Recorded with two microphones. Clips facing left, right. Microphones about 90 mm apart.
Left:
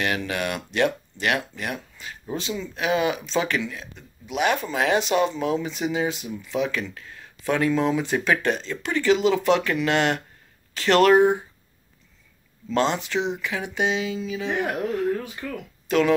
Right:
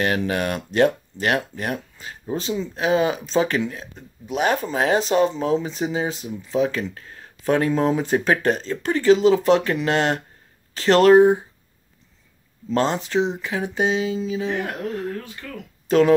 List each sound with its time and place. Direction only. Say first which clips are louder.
0.0 s speech: right 4 dB; 35° right (ahead or behind)
12.6 s speech: right 1 dB; 35° right (ahead or behind)
14.5 s speech: left 1 dB; 20° left (ahead or behind)
15.0 s a sound: left 4 dB; 15° left (ahead or behind)
15.9 s speech: right 4 dB; 35° right (ahead or behind)